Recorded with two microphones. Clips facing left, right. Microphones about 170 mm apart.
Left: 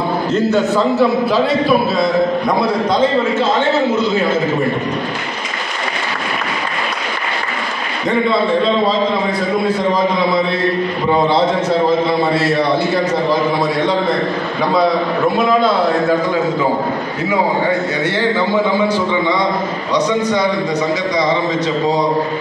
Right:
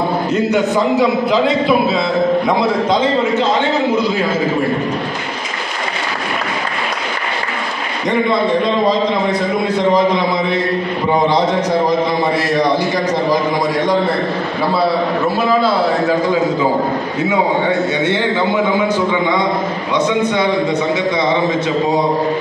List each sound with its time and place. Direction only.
0.3 s a man's voice: 15° right (ahead or behind)
8.3 s a man's voice: 15° right (ahead or behind)
12.5 s a man's voice: 15° right (ahead or behind)
14.7 s a man's voice: 5° right (ahead or behind)